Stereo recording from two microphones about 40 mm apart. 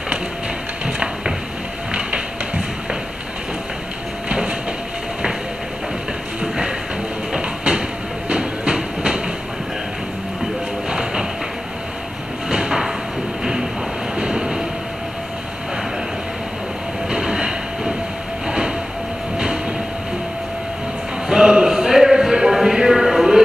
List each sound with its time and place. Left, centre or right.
0.8 s a sound: right
1.9 s music: right
4.3 s train: right
6.4 s music: centre
7.3 s train: right
10.9 s train: centre
12.4 s a sound: centre
13.4 s train: centre
17.1 s train: centre
19.3 s train: centre
21.3 s a sound: right